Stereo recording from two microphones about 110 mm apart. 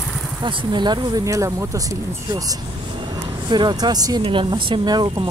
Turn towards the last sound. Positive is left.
turn(degrees=-40)  # may be behind; listen again after turning